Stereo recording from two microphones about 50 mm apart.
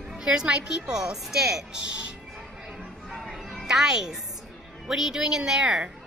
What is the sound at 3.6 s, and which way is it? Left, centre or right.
A woman's voice, centre.